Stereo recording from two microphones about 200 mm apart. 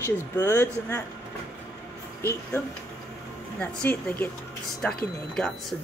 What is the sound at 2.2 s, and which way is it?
Speech, 10° left (ahead or behind).